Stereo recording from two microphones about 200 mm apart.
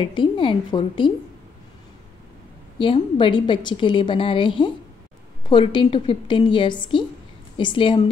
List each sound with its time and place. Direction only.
0.0 s a woman's voice: 25° left (ahead or behind)
2.8 s a woman's voice: 25° left (ahead or behind)